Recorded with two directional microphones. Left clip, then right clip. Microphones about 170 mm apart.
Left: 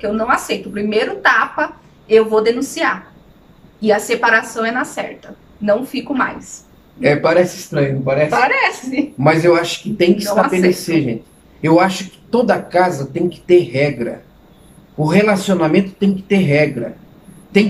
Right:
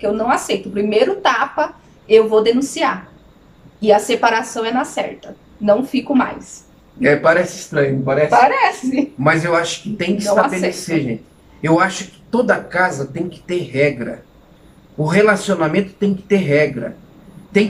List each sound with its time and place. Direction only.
0.0 s a woman's voice: 15° right (ahead or behind)
7.0 s speech: 10° left (ahead or behind)
8.3 s a woman's voice: 15° right (ahead or behind)
9.2 s speech: 10° left (ahead or behind)